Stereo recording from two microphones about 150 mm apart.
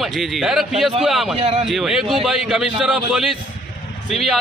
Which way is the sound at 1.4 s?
45° right (ahead or behind).